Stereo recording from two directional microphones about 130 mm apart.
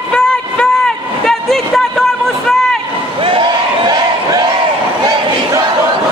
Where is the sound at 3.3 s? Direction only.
40° right (ahead or behind).